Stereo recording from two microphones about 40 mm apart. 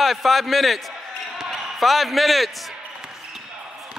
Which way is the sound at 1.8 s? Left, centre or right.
Centre.